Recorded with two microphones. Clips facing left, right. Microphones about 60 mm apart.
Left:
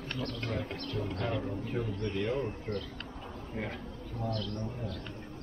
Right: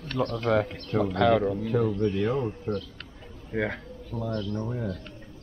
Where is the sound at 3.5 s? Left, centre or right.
Right.